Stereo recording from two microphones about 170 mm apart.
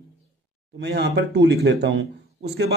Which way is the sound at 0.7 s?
80° right.